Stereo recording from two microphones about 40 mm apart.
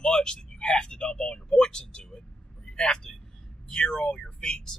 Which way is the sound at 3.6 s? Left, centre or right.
Left.